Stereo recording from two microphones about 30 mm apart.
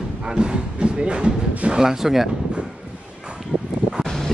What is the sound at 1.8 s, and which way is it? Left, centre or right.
Speech, centre.